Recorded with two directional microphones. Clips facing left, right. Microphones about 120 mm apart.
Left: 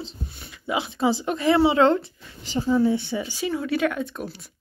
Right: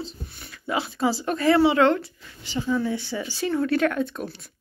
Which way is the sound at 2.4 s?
40° left (ahead or behind).